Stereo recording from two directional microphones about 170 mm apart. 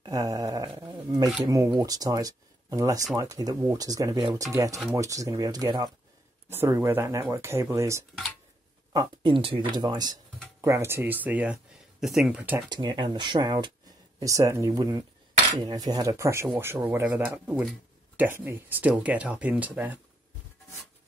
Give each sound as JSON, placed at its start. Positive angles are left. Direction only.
{"t": 0.0, "sound": "a sound", "side_deg": -20}
{"t": 0.7, "sound": "wild animals", "side_deg": -25}
{"t": 1.4, "sound": "speech", "side_deg": -20}
{"t": 12.5, "sound": "speech", "side_deg": -25}